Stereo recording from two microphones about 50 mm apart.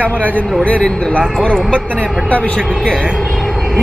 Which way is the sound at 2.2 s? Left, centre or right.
Left.